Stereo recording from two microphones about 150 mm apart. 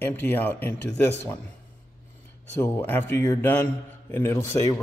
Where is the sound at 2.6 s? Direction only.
10° left (ahead or behind).